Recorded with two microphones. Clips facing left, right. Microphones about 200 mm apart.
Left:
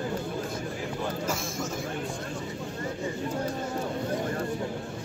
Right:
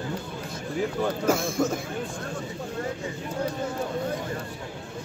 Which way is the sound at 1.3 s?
60° right (ahead or behind).